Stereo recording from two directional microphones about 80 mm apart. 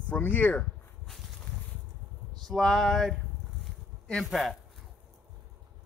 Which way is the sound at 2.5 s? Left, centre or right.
Centre.